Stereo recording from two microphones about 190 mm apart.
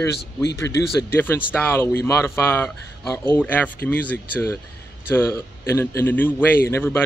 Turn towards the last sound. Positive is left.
turn(degrees=10)  # may be behind; listen again after turning